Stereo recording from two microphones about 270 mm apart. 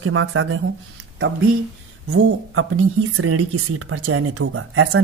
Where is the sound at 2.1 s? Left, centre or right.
Right.